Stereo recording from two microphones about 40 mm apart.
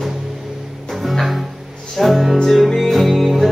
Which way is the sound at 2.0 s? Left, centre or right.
Centre.